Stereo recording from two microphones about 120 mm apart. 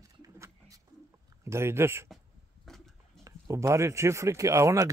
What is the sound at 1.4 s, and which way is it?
Speech, 20° right (ahead or behind).